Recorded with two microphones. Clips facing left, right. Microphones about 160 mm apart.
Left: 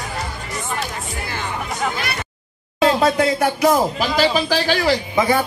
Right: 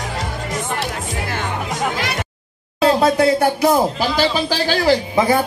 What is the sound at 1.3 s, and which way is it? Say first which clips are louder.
Music: right 1 dB; 75° right (ahead or behind).